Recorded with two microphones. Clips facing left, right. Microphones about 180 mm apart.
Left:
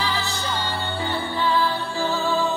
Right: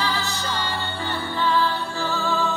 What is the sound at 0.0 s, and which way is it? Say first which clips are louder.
Music: even; 15° left (ahead or behind).